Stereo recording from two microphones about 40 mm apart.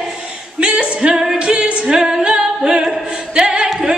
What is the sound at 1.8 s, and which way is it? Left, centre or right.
A capella, centre.